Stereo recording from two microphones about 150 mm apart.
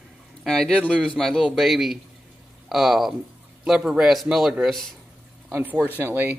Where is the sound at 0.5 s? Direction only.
5° left (ahead or behind).